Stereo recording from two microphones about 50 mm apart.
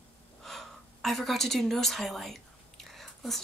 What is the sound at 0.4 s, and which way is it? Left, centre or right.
Speech, centre.